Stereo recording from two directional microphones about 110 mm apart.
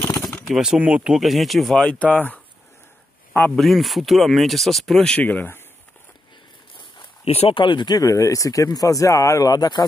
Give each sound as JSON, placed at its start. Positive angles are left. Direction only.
{"t": 0.5, "sound": "speech", "side_deg": -5}
{"t": 3.5, "sound": "speech", "side_deg": 0}
{"t": 7.2, "sound": "speech", "side_deg": 65}